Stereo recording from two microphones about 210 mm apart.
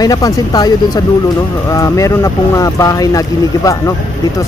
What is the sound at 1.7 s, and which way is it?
Speech, 15° left (ahead or behind).